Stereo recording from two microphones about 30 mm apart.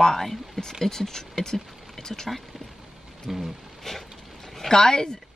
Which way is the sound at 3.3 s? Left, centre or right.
Centre.